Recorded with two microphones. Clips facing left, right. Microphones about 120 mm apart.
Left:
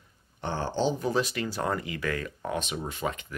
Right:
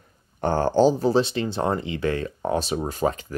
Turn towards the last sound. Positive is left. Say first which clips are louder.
# right 8 dB
turn(degrees=-35)  # may be behind; listen again after turning